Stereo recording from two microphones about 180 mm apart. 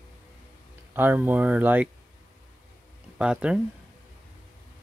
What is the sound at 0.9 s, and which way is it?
Speech, 10° right (ahead or behind).